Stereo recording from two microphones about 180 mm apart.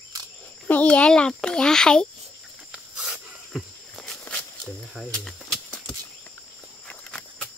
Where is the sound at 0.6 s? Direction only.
10° left (ahead or behind).